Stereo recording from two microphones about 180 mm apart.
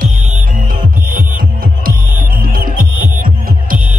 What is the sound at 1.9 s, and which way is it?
Music, 50° right (ahead or behind).